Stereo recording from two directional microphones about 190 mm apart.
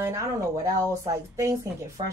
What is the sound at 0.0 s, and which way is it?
A woman's voice, 15° right (ahead or behind).